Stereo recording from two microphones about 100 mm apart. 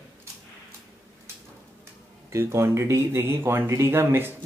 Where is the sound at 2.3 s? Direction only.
25° right (ahead or behind).